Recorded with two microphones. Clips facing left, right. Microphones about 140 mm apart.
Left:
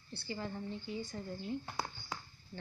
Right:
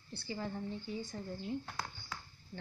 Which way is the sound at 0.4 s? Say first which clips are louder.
Right 2 dB; centre (ahead or behind).